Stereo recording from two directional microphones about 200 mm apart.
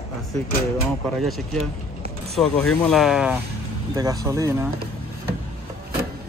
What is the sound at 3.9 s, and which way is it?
Speech, 20° right (ahead or behind).